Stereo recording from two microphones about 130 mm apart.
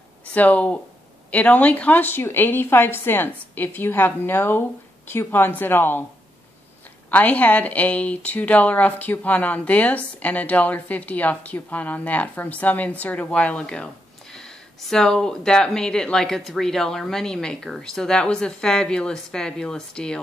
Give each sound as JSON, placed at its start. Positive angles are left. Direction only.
{"t": 0.3, "sound": "speech", "side_deg": 10}
{"t": 7.1, "sound": "speech", "side_deg": 10}